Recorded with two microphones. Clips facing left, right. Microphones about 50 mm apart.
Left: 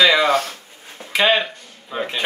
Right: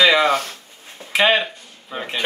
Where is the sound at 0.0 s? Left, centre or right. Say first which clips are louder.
Even; centre.